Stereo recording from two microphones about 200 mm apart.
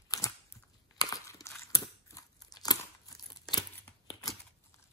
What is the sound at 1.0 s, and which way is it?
Scissors, 20° left (ahead or behind).